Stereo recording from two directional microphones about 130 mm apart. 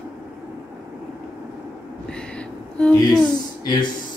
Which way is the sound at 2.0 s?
5° left (ahead or behind).